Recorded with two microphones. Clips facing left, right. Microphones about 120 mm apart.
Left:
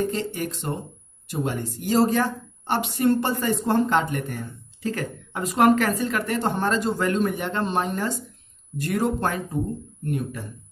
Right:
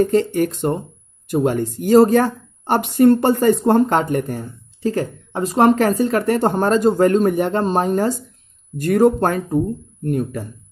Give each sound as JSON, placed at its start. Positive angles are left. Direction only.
{"t": 0.0, "sound": "a woman's voice", "side_deg": -50}